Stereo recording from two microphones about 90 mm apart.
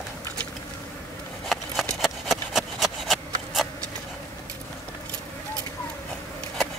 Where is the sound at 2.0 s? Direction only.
Centre (ahead or behind).